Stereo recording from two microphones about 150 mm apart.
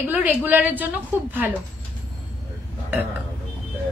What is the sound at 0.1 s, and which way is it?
Speech, 10° right (ahead or behind).